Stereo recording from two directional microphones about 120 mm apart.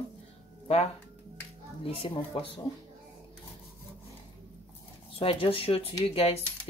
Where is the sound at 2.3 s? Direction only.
50° left (ahead or behind).